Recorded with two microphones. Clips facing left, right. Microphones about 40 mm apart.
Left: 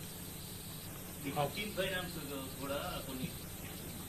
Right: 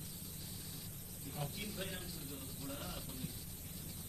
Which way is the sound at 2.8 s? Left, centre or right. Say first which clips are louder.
Left 6 dB; left.